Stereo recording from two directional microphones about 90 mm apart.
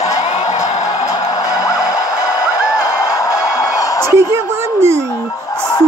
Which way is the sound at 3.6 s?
35° left (ahead or behind).